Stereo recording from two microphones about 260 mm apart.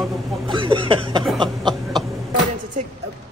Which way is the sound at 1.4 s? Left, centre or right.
Centre.